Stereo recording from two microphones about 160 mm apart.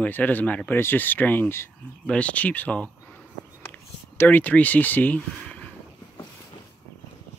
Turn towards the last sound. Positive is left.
turn(degrees=10)  # may be behind; listen again after turning